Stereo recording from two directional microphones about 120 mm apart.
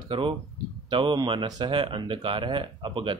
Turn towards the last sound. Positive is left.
turn(degrees=-45)  # may be behind; listen again after turning